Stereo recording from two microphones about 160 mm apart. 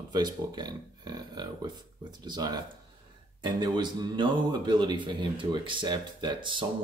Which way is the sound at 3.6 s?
25° right (ahead or behind).